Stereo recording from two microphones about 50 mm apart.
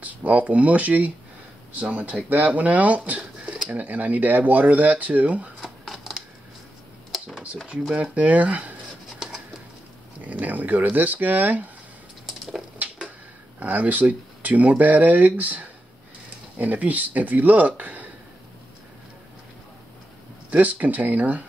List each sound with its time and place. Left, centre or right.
0.0 s speech: right
3.7 s speech: right
7.9 s speech: right
10.2 s speech: right
12.8 s a sound: right
13.6 s speech: right
20.4 s speech: right